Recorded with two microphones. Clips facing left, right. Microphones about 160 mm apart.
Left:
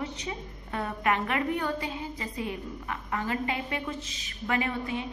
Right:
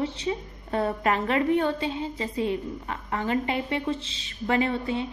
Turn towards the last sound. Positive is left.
turn(degrees=-30)  # may be behind; listen again after turning